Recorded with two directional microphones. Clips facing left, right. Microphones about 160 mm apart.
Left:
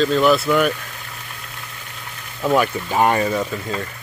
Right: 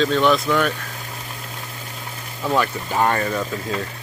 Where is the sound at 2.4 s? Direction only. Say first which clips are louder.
Left 3 dB; 15° left (ahead or behind).